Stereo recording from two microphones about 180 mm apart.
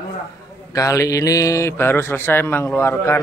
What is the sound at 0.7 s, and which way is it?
Speech, 20° left (ahead or behind).